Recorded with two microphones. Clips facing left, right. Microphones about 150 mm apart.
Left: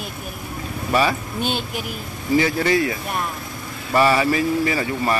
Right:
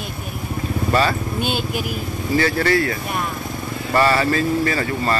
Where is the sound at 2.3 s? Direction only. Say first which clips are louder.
Even; 15° left (ahead or behind).